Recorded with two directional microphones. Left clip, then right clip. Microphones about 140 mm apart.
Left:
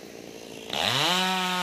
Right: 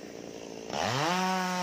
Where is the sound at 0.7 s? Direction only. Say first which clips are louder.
Left 5 dB; 5° left (ahead or behind).